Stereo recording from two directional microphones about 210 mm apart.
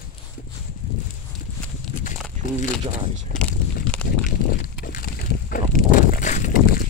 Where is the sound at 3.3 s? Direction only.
5° left (ahead or behind).